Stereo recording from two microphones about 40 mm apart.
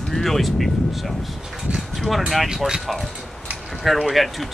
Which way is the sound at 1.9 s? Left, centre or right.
Centre.